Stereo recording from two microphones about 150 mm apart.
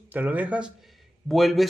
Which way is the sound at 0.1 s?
10° right (ahead or behind).